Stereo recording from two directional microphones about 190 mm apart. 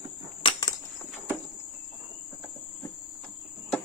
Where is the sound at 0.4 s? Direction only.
25° left (ahead or behind).